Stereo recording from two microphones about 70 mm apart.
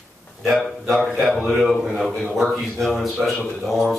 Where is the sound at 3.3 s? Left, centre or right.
Centre.